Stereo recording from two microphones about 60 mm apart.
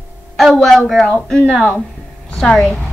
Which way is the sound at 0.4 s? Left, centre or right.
Centre.